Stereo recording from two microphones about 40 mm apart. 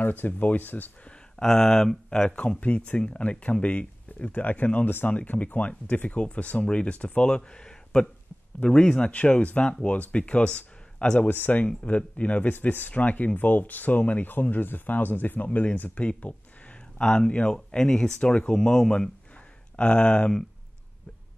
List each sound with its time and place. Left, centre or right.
0.0 s speech: left
1.4 s speech: centre
11.1 s speech: left
11.6 s speech: left
15.4 s speech: left
17.0 s speech: left